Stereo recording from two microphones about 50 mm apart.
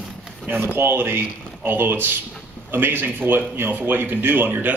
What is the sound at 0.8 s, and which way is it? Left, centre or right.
Speech, right.